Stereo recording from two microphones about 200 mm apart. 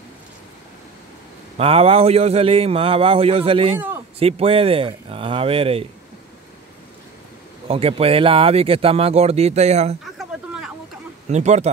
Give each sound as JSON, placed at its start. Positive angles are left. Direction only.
{"t": 1.6, "sound": "speech", "side_deg": -30}
{"t": 7.6, "sound": "speech", "side_deg": -30}
{"t": 10.1, "sound": "a sound", "side_deg": 0}
{"t": 11.2, "sound": "speech", "side_deg": -35}